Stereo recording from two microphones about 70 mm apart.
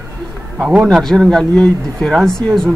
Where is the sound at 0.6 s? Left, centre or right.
Right.